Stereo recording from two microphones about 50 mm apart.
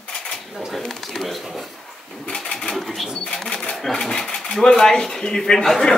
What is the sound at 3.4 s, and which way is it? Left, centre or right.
Cash register, centre.